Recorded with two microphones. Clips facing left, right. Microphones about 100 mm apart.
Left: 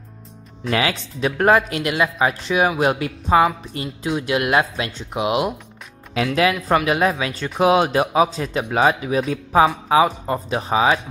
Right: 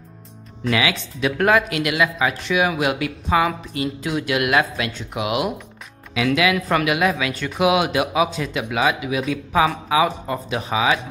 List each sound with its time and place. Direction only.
0.7 s speech: 40° left (ahead or behind)
6.2 s speech: 45° left (ahead or behind)
6.5 s speech: 30° left (ahead or behind)